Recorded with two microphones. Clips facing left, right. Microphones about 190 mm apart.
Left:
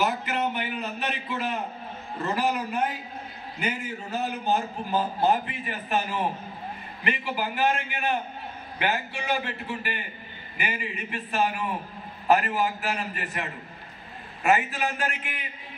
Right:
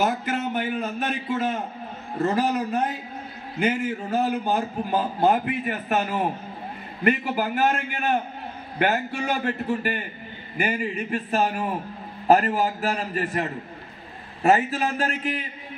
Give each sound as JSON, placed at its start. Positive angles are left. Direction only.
{"t": 0.0, "sound": "a man's voice", "side_deg": -45}